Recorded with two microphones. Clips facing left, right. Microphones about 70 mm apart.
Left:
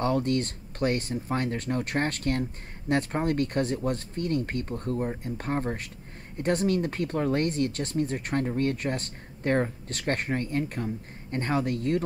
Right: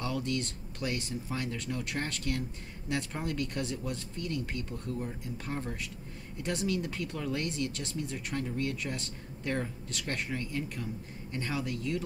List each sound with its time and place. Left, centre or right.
0.0 s speech: left